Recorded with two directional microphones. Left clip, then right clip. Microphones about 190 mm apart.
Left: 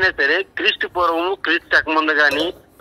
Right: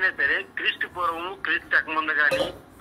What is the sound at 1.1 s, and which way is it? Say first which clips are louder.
Speech: left 12 dB; 65° left (ahead or behind).